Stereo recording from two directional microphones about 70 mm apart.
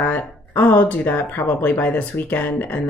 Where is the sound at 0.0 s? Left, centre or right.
Left.